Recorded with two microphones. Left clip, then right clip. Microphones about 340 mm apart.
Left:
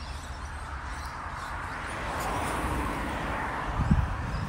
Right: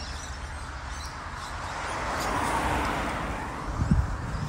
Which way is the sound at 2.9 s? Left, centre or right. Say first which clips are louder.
Right 1 dB; centre.